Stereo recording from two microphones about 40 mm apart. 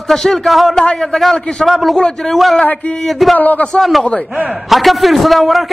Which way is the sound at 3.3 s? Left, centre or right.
Left.